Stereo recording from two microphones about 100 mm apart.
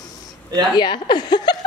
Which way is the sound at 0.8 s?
50° left (ahead or behind).